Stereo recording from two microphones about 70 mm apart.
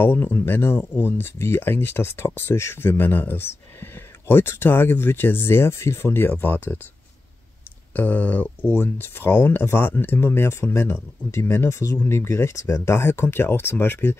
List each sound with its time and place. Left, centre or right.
0.0 s speech: left
7.9 s speech: left